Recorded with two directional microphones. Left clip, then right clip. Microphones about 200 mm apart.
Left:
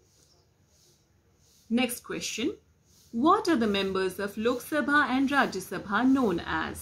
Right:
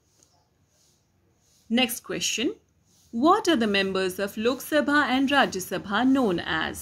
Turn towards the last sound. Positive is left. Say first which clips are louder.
# right 3 dB
turn(degrees=-40)  # may be behind; listen again after turning